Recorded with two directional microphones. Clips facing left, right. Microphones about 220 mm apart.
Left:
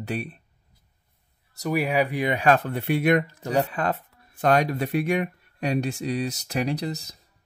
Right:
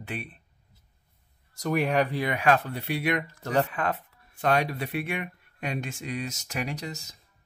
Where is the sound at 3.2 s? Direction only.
15° left (ahead or behind).